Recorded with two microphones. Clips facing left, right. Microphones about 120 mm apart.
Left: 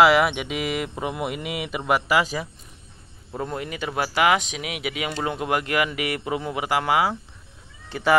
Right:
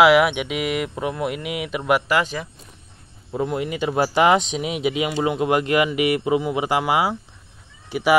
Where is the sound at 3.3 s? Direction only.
15° right (ahead or behind).